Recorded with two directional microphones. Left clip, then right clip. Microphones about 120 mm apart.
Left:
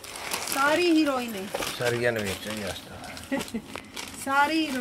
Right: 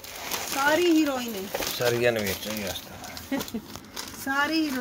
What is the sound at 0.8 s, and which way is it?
Speech, 15° left (ahead or behind).